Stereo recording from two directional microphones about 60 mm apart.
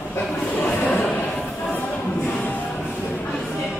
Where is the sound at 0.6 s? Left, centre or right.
Left.